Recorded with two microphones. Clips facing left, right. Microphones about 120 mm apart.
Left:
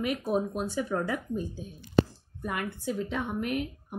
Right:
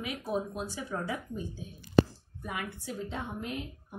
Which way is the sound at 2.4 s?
75° left (ahead or behind).